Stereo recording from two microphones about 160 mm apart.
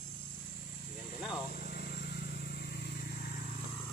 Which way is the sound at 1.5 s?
65° left (ahead or behind).